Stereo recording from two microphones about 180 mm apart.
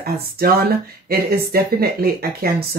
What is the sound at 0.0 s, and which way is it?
Speech, 60° right (ahead or behind).